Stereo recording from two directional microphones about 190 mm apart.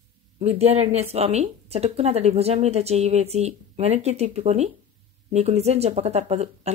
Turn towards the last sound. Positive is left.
turn(degrees=-35)  # may be behind; listen again after turning